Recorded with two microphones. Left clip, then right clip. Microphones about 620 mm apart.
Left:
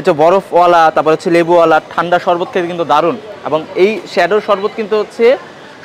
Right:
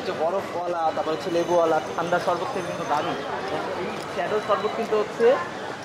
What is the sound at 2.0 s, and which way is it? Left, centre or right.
Speech, left.